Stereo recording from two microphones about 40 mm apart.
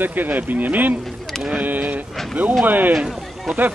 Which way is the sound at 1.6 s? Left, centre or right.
Right.